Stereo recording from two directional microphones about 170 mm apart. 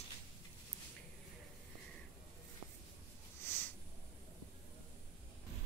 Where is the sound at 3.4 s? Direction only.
15° left (ahead or behind).